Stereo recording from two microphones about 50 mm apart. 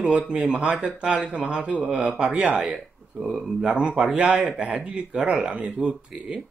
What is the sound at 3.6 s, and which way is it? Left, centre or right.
Speech, right.